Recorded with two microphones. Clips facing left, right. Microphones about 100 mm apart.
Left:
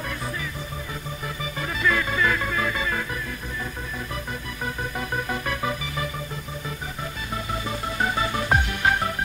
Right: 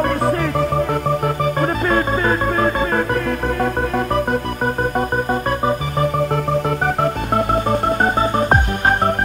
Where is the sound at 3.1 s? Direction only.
65° right (ahead or behind).